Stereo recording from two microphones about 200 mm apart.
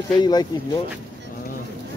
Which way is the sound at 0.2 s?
20° left (ahead or behind).